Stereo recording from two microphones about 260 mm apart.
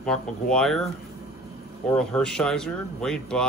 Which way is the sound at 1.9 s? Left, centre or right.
Centre.